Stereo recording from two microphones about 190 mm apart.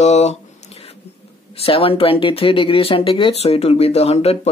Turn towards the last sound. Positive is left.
turn(degrees=35)  # may be behind; listen again after turning